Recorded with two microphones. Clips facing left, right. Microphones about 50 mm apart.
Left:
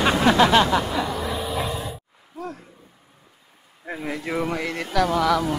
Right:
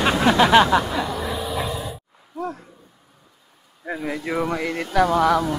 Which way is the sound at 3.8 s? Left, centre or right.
Centre.